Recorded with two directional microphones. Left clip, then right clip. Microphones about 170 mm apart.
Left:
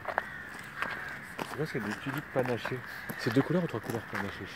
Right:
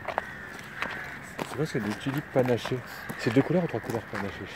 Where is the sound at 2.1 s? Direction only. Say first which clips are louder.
Right 4 dB; centre (ahead or behind).